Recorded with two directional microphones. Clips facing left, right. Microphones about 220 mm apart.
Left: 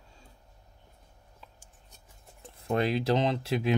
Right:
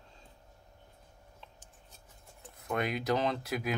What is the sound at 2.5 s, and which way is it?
Speech, 30° left (ahead or behind).